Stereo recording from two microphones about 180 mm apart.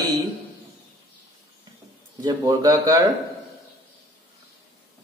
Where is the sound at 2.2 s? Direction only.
20° right (ahead or behind).